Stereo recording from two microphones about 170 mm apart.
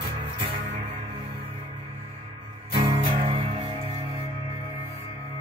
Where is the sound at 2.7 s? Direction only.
35° right (ahead or behind).